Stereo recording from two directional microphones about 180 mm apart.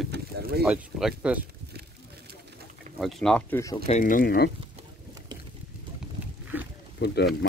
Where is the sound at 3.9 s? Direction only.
45° left (ahead or behind).